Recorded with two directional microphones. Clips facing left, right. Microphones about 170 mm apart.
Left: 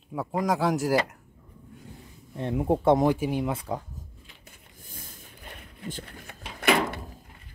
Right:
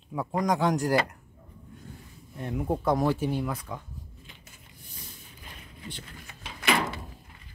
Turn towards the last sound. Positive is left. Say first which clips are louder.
# left 3 dB
turn(degrees=55)  # may be behind; listen again after turning